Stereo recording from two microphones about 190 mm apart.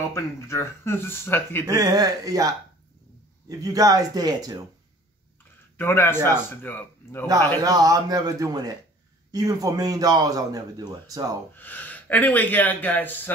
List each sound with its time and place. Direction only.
0.1 s speech: 15° left (ahead or behind)
1.7 s a man's voice: 20° right (ahead or behind)
5.8 s speech: 10° left (ahead or behind)
7.2 s a man's voice: 20° right (ahead or behind)
11.5 s speech: 10° left (ahead or behind)